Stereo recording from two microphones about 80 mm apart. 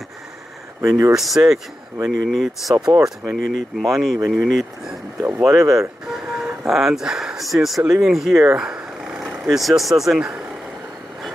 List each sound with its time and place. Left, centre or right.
0.8 s speech: right
1.1 s speech: centre
2.8 s speech: right
3.7 s speech: centre
5.2 s speech: right
6.2 s speech: centre
8.5 s purr: centre
9.4 s speech: centre